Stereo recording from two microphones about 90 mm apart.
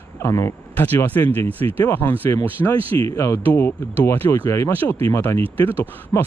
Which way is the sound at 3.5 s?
20° left (ahead or behind).